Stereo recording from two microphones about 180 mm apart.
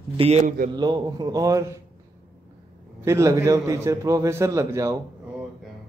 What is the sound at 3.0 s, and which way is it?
A man's voice, 15° right (ahead or behind).